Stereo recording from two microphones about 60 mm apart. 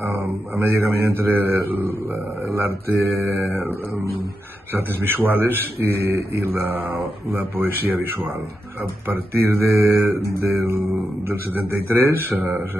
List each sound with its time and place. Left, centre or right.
0.0 s mantra: right
2.5 s speech: right
10.4 s mantra: right
11.9 s speech: right